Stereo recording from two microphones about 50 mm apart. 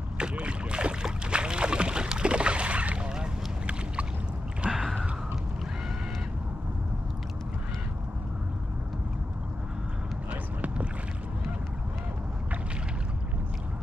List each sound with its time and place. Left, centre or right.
0.2 s boat: right
4.6 s a sound: centre
10.3 s vehicle: right